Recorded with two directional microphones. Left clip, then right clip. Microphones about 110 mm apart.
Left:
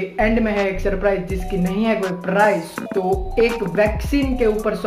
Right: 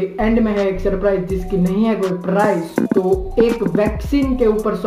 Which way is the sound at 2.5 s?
30° left (ahead or behind).